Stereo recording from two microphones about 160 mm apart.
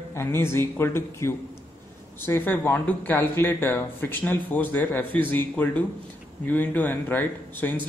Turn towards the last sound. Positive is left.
turn(degrees=10)  # may be behind; listen again after turning